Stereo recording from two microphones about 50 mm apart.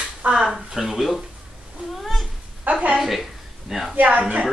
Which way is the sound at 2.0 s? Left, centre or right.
Centre.